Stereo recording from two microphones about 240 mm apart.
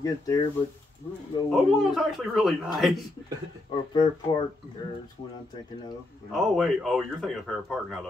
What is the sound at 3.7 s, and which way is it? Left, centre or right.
Speech, centre.